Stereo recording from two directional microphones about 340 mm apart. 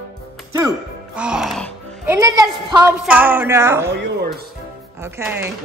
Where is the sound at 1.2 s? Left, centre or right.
Centre.